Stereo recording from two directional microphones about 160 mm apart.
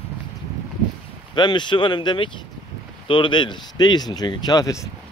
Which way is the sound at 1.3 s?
30° left (ahead or behind).